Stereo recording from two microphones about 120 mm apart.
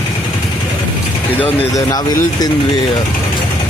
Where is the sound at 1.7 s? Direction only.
30° left (ahead or behind).